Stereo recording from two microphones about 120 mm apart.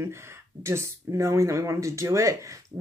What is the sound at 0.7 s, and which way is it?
Speech, 25° right (ahead or behind).